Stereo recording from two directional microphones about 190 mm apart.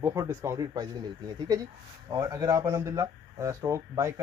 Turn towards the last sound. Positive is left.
turn(degrees=-15)  # may be behind; listen again after turning